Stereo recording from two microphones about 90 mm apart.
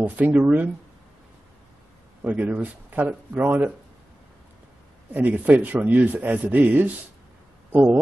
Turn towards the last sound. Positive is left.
turn(degrees=-20)  # may be behind; listen again after turning